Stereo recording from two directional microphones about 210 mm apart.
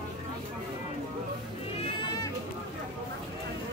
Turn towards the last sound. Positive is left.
turn(degrees=20)  # may be behind; listen again after turning